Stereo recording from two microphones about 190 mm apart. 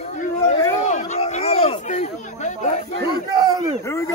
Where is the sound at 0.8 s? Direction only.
35° left (ahead or behind).